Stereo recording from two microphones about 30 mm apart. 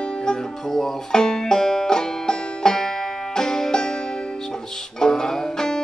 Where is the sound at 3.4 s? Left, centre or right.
Left.